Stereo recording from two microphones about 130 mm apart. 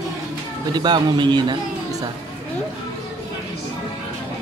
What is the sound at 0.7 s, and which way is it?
Speech, 35° right (ahead or behind).